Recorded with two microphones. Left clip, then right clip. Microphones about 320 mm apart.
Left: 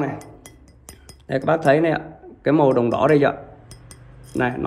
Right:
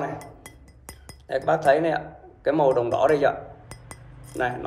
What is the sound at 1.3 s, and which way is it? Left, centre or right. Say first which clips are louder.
Speech: left 2 dB; centre.